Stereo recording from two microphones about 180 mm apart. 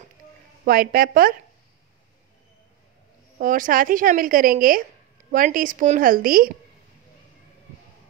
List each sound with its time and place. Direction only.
0.7 s a woman's voice: 55° right (ahead or behind)
3.3 s a woman's voice: 50° right (ahead or behind)